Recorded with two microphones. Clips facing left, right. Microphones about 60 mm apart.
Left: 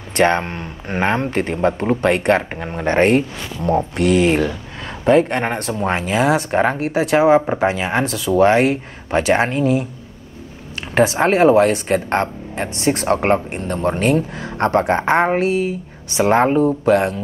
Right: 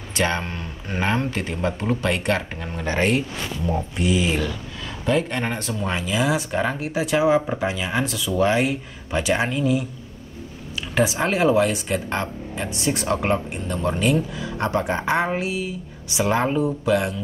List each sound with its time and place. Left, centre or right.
0.1 s speech: left
5.1 s speech: left
10.8 s a sound: left
11.1 s speech: left